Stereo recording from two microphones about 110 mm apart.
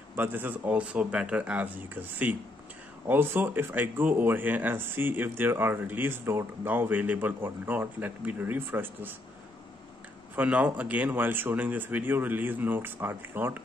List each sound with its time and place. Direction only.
0.1 s speech: 20° right (ahead or behind)
10.3 s speech: 15° right (ahead or behind)